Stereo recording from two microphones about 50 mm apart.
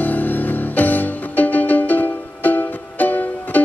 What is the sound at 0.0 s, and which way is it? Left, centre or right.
Music, left.